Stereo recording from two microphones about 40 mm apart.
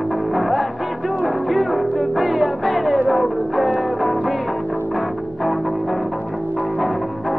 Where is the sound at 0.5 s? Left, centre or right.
Centre.